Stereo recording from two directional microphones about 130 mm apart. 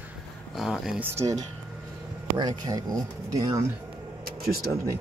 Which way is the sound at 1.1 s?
25° right (ahead or behind).